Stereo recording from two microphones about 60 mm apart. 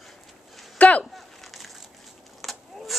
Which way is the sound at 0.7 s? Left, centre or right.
Left.